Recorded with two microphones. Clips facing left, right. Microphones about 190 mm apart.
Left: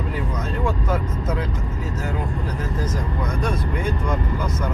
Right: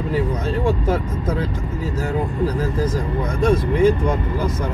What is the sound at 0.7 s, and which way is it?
Speech, 30° right (ahead or behind).